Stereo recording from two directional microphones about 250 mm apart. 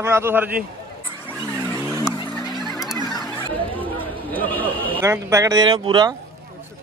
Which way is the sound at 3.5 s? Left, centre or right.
Right.